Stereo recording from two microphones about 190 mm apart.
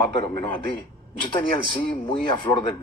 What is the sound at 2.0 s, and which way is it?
Speech, 25° left (ahead or behind).